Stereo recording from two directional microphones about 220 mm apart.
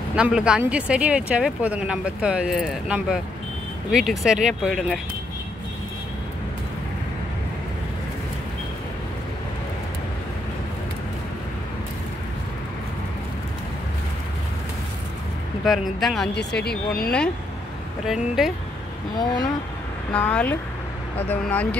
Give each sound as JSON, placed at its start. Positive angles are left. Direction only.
{"t": 0.1, "sound": "speech", "side_deg": -5}
{"t": 15.6, "sound": "speech", "side_deg": 0}
{"t": 16.3, "sound": "speech", "side_deg": 45}
{"t": 18.0, "sound": "speech", "side_deg": 0}
{"t": 19.1, "sound": "speech", "side_deg": 15}
{"t": 20.1, "sound": "speech", "side_deg": 5}